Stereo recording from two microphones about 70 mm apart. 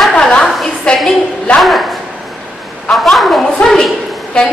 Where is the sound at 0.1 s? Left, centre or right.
Centre.